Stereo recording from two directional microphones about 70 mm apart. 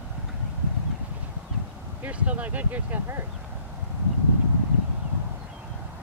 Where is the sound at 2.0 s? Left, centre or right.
Right.